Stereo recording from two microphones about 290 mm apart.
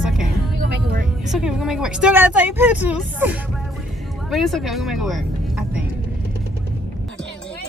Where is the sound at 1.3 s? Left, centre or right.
Centre.